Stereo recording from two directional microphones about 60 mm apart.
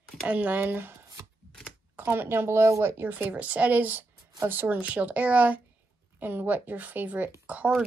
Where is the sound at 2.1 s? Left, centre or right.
Right.